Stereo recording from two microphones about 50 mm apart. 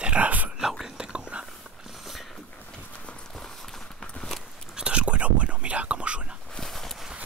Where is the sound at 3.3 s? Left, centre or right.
Centre.